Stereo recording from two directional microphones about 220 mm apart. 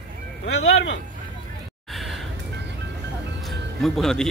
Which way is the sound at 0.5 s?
60° left (ahead or behind).